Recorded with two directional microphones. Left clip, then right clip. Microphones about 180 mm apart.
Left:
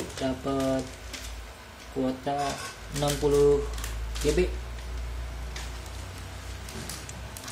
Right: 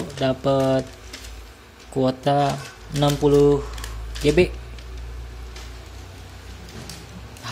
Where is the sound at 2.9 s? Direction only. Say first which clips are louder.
Right 7 dB; 35° right (ahead or behind).